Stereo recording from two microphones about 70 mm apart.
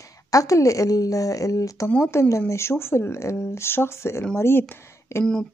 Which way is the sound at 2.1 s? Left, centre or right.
Left.